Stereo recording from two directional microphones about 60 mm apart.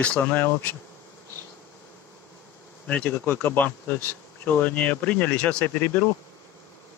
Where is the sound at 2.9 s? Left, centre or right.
Left.